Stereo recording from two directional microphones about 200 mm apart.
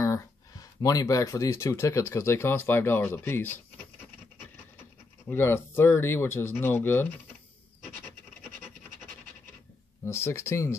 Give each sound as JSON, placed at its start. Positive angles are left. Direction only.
{"t": 0.0, "sound": "speech", "side_deg": 15}
{"t": 5.3, "sound": "speech", "side_deg": 10}
{"t": 10.0, "sound": "speech", "side_deg": 15}